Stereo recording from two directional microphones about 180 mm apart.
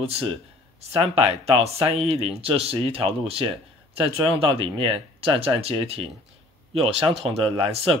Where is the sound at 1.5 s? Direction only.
35° right (ahead or behind).